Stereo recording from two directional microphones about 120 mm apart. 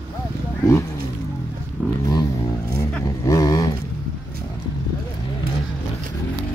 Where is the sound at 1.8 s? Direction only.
15° left (ahead or behind).